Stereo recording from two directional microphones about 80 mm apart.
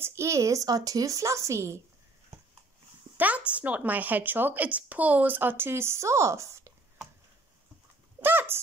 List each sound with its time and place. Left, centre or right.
0.0 s a woman's voice: right
3.2 s speech: centre; by 6.7 s right
8.2 s horse: right